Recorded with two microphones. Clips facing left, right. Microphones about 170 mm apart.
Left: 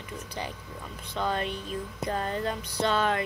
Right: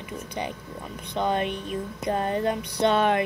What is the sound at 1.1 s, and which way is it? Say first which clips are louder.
A woman's voice: right 4 dB; 20° right (ahead or behind).